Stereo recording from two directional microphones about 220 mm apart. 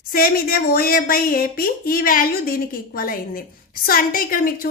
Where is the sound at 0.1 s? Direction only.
40° left (ahead or behind).